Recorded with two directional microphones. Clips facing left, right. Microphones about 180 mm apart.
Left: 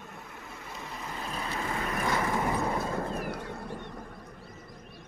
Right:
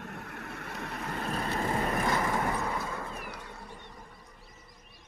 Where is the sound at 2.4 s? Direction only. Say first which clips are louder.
Left 3 dB; 25° left (ahead or behind).